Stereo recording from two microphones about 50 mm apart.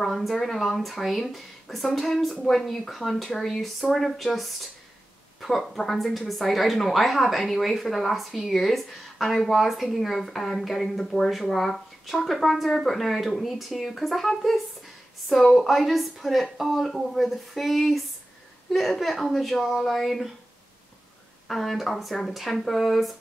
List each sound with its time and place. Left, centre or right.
0.0 s speech: centre
2.6 s speech: centre
21.5 s speech: centre